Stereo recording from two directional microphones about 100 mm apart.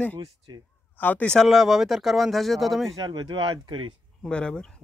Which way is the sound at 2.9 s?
45° right (ahead or behind).